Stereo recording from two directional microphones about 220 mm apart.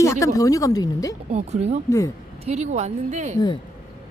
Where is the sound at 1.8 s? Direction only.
15° left (ahead or behind).